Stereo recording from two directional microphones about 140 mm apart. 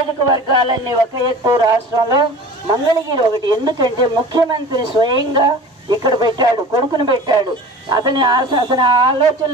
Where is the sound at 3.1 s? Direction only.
30° right (ahead or behind).